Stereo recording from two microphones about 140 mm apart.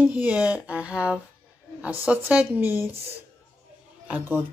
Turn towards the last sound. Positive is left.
turn(degrees=-10)  # may be behind; listen again after turning